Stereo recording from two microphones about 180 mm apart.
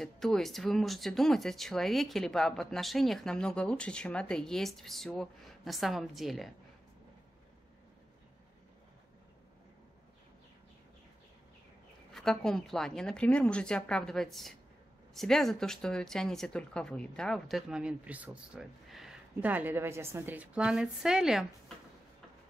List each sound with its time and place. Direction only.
0.0 s speech: centre (ahead or behind)
12.1 s speech: centre (ahead or behind)